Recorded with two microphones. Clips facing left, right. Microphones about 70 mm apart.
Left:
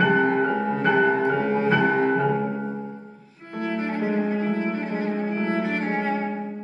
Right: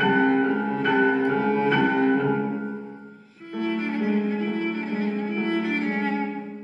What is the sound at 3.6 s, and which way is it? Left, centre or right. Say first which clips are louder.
Cello: even; left.